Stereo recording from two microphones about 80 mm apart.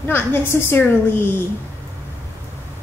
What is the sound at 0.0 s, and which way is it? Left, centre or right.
A woman's voice, left.